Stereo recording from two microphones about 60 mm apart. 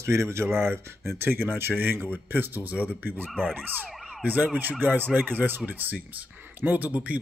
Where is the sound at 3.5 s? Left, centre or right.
Right.